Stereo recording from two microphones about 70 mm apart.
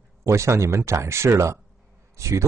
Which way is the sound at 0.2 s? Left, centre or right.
Right.